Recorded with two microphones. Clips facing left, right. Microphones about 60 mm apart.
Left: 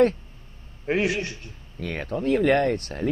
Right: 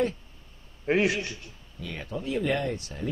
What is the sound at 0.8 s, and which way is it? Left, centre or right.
Speech, centre.